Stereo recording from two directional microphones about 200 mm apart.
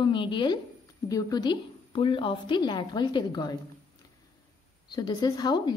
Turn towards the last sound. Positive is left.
turn(degrees=20)  # may be behind; listen again after turning